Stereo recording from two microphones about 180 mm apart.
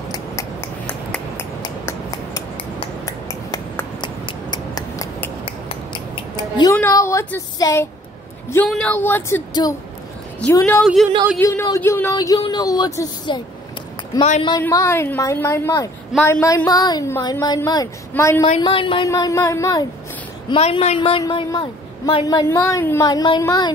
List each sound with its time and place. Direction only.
0.1 s a sound: 20° left (ahead or behind)
3.1 s scissors: 20° left (ahead or behind)
8.6 s a woman's voice: 5° left (ahead or behind)
9.5 s a woman's voice: 20° left (ahead or behind)
10.8 s speech: centre (ahead or behind)
11.3 s a woman's voice: 15° left (ahead or behind)
14.6 s a woman's voice: 15° left (ahead or behind)
18.6 s a woman's voice: 30° left (ahead or behind)
19.0 s a woman's voice: 20° left (ahead or behind)
20.4 s a woman's voice: 30° left (ahead or behind)